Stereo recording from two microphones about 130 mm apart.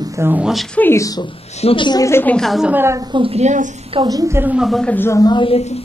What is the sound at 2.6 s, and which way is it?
Speech, 20° right (ahead or behind).